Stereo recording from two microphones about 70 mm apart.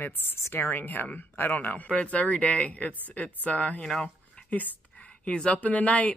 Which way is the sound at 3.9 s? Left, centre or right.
Centre.